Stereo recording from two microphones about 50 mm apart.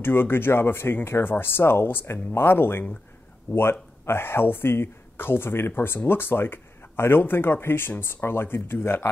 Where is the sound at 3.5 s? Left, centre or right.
Left.